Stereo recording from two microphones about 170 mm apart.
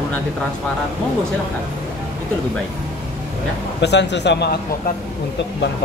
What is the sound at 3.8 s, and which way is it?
Speech, 85° left.